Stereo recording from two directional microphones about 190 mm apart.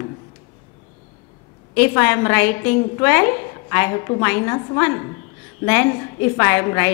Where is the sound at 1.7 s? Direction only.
10° left (ahead or behind).